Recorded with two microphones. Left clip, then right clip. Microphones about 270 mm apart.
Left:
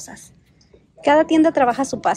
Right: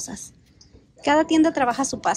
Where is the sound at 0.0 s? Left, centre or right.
Centre.